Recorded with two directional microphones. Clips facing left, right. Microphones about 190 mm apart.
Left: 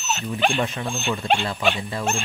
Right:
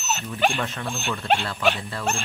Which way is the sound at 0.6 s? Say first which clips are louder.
Left 4 dB; 15° left (ahead or behind).